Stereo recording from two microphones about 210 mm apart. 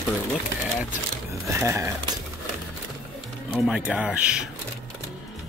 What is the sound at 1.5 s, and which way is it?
Speech, 15° right (ahead or behind).